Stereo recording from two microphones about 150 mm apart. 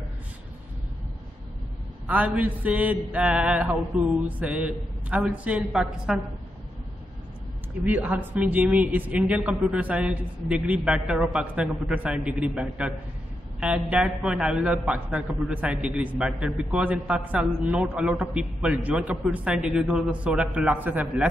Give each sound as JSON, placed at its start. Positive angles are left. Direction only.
{"t": 2.0, "sound": "a man's voice", "side_deg": -10}
{"t": 7.8, "sound": "a man's voice", "side_deg": -10}